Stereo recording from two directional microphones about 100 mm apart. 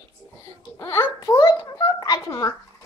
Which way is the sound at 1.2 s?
45° left (ahead or behind).